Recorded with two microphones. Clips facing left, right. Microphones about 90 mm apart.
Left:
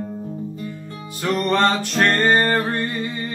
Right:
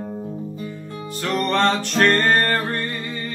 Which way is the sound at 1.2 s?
Centre (ahead or behind).